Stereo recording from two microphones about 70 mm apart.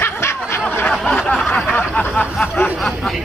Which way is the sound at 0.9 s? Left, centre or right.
Centre.